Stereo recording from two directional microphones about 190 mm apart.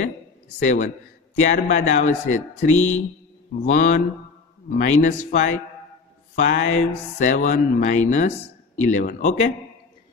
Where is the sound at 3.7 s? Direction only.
40° left (ahead or behind).